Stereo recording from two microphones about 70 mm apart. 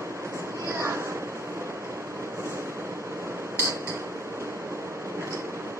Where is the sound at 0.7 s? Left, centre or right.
Right.